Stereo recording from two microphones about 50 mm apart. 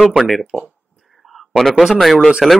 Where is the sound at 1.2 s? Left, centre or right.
Centre.